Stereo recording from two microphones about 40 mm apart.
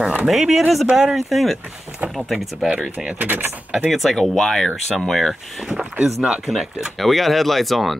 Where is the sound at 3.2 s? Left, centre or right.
Right.